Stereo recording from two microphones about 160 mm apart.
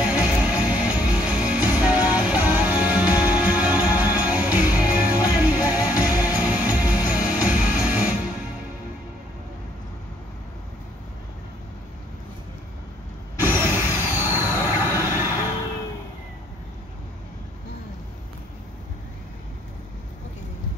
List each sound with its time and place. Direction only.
0.0 s music: 10° right (ahead or behind)
13.4 s vehicle: 15° right (ahead or behind)